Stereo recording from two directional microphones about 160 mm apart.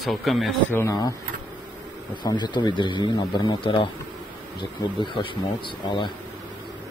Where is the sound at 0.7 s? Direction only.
20° left (ahead or behind).